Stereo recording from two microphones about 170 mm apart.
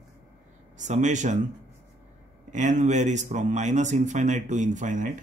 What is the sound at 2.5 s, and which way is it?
A man's voice, 45° right (ahead or behind).